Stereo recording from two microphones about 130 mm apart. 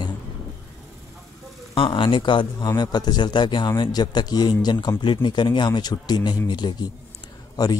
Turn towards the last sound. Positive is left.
turn(degrees=30)  # may be behind; listen again after turning